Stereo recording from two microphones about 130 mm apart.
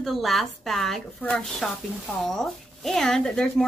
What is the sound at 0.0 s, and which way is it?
Speech, centre (ahead or behind).